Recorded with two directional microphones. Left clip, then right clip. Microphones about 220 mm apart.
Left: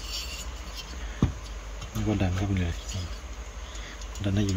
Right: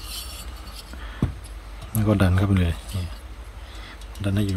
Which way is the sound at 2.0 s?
30° right (ahead or behind).